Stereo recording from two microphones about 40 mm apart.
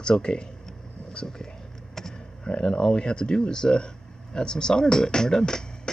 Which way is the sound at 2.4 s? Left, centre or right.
Left.